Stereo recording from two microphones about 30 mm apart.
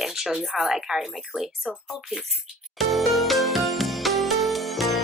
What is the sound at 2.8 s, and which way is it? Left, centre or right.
Music, centre.